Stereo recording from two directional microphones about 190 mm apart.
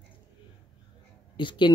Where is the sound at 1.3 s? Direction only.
25° left (ahead or behind).